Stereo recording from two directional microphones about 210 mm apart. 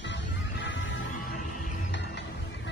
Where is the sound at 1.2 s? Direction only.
40° left (ahead or behind).